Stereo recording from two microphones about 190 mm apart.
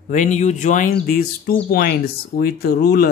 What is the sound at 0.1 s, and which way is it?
Speech, 40° left (ahead or behind).